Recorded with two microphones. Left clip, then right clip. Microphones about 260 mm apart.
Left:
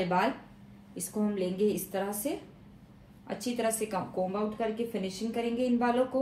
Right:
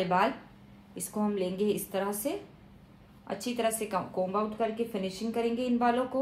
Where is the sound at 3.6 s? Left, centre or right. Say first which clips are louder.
Right 1 dB; centre.